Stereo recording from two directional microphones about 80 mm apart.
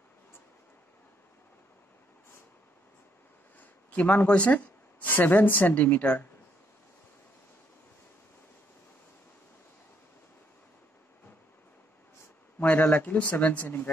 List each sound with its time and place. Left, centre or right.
3.5 s speech: centre
12.5 s speech: centre